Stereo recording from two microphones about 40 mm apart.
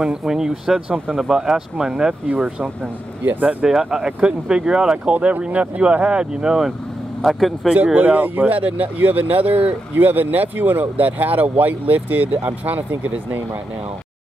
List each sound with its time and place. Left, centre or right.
0.0 s speech: centre
2.6 s speech: right
3.6 s speech: centre
5.1 s speech: right
5.5 s speech: right
7.2 s speech: centre
7.7 s speech: right